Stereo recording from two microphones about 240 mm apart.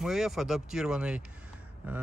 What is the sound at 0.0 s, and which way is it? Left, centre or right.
Speech, centre.